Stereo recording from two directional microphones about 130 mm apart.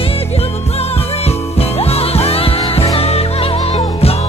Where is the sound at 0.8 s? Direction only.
50° left (ahead or behind).